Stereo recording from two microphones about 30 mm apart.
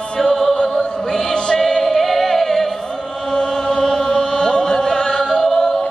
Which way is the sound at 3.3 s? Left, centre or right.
Left.